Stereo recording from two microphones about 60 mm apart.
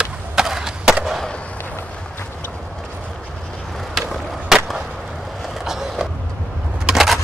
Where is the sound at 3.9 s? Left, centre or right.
Centre.